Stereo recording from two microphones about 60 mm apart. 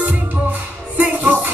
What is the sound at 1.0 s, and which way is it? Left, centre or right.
Music, right.